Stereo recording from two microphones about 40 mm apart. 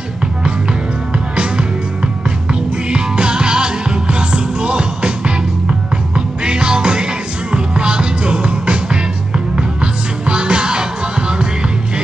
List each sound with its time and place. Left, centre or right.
1.1 s music: right
2.9 s music: right